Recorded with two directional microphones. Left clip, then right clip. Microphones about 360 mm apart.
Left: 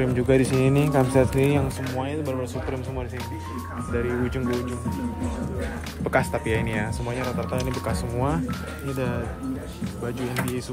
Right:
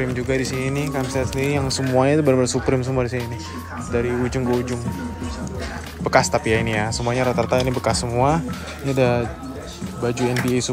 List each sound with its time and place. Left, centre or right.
0.0 s speech: centre
2.0 s speech: right
3.9 s speech: centre
6.0 s speech: centre